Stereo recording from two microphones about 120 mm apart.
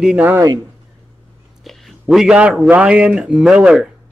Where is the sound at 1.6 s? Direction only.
Centre (ahead or behind).